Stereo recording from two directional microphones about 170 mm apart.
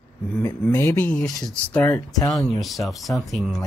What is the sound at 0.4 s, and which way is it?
Speech, 10° left (ahead or behind).